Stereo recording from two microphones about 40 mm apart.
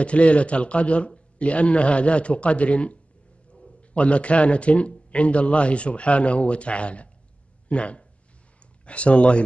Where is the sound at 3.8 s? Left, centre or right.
Left.